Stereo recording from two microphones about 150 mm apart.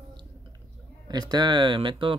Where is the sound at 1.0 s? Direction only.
30° right (ahead or behind).